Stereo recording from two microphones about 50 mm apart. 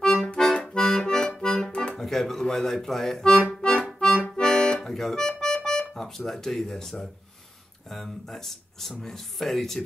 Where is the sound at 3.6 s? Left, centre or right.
Centre.